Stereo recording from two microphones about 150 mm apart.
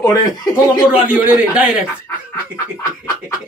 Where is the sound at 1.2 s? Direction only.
5° right (ahead or behind).